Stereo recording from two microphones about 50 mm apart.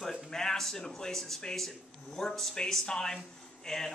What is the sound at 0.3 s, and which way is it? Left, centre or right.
A man's voice, centre.